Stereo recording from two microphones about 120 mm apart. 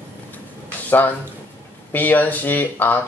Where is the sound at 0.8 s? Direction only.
15° left (ahead or behind).